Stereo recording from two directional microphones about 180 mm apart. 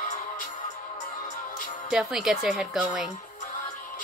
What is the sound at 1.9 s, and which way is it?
A woman's voice, 5° right (ahead or behind).